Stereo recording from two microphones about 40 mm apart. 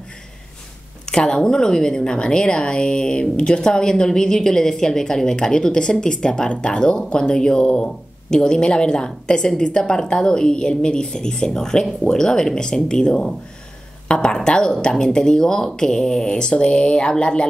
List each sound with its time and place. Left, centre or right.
1.1 s a woman's voice: centre